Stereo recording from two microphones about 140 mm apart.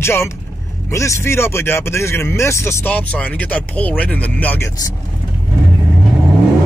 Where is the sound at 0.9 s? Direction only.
20° left (ahead or behind).